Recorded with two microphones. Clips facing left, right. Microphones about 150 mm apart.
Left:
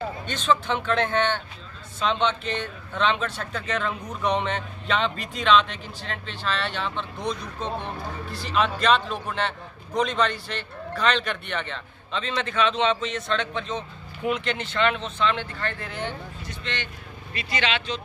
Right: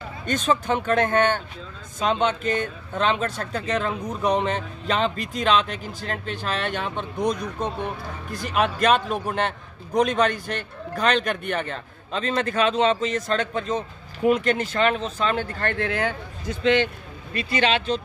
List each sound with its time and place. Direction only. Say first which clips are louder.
0.3 s a man's voice: right 2 dB; 45° right (ahead or behind)
8.3 s a man's voice: right 2 dB; 50° right (ahead or behind); by 16.0 s 70° right (ahead or behind)
17.3 s a man's voice: right 5 dB; 45° right (ahead or behind)